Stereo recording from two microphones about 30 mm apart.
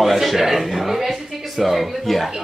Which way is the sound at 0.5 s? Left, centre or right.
Centre.